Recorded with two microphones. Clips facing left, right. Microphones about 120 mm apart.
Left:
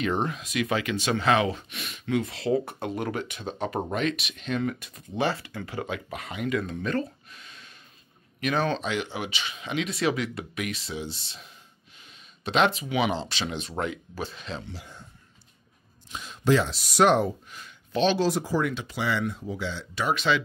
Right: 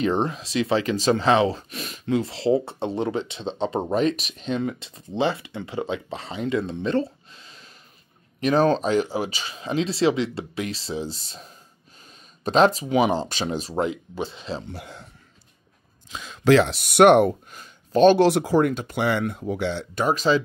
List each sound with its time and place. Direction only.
0.0 s speech: 30° right (ahead or behind)
14.7 s speech: 70° right (ahead or behind)
16.1 s speech: 85° right; by 17.4 s 65° right (ahead or behind)
17.5 s a sound: 45° right (ahead or behind)
18.2 s speech: 70° right (ahead or behind)
18.6 s speech: 45° right (ahead or behind)
20.1 s speech: 40° right (ahead or behind)